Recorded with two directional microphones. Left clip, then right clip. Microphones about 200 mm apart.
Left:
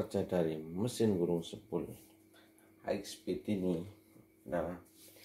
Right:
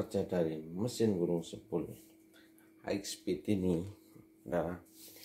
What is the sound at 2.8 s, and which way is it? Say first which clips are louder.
Speech: even; 30° right (ahead or behind).